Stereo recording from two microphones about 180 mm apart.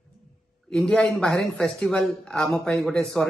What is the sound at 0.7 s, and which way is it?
Speech, 5° left (ahead or behind).